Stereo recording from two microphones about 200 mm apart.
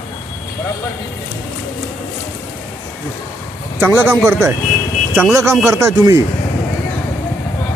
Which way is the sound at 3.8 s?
10° right (ahead or behind).